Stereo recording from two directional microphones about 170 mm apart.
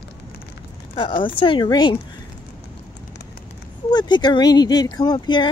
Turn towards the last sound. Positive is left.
turn(degrees=25)  # may be behind; listen again after turning